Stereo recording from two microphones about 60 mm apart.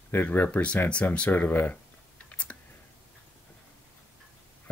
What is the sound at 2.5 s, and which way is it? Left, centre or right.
Clicking, left.